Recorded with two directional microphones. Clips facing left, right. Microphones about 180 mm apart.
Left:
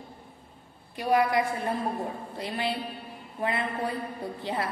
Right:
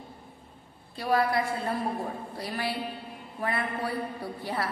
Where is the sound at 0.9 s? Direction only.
15° left (ahead or behind).